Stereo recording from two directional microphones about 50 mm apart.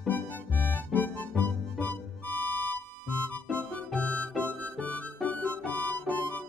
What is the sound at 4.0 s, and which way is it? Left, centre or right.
Music, left.